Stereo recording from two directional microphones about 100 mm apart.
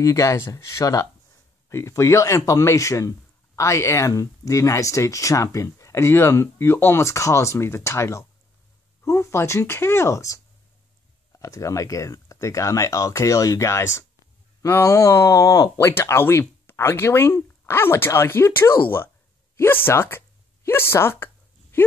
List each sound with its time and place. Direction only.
0.0 s speech: 30° left (ahead or behind)